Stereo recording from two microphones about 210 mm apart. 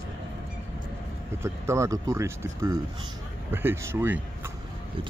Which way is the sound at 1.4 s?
15° right (ahead or behind).